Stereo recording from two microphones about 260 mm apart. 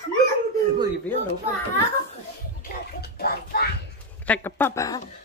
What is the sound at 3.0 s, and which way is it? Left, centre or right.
Bathtub, left.